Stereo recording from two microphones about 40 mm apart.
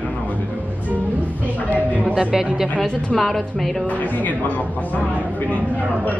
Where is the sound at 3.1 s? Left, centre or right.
Centre.